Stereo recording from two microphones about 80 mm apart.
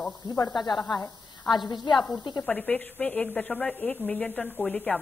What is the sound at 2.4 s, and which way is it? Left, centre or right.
A woman's voice, centre.